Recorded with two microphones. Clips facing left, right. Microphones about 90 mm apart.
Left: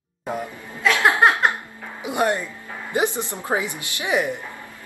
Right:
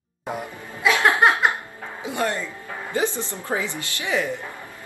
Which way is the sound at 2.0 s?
20° left (ahead or behind).